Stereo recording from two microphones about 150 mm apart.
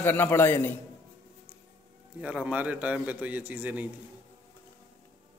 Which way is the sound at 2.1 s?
10° right (ahead or behind).